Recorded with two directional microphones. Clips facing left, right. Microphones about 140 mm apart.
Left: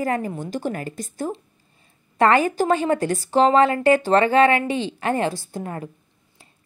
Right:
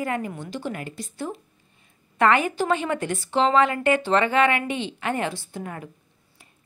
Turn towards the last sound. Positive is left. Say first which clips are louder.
# left 4 dB
turn(degrees=35)  # may be behind; listen again after turning